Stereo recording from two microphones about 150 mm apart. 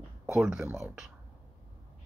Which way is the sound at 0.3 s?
5° right (ahead or behind).